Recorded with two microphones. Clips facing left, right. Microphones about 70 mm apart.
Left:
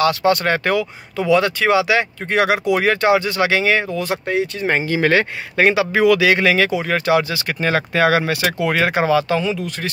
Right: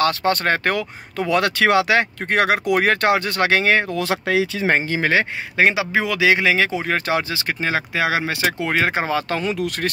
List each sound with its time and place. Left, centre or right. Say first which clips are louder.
0.0 s speech: left 3 dB; right
3.9 s speech: even; right
4.6 s a man's voice: left 2 dB; right
7.7 s a man's voice: left 6 dB; centre; by 9.2 s right
9.3 s speech: left 2 dB; right